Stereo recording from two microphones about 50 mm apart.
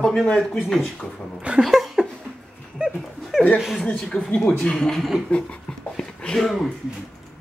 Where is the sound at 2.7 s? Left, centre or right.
Centre.